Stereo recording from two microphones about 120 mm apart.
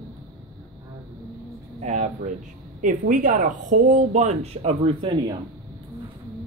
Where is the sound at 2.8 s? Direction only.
90° right; by 4.7 s 75° right (ahead or behind).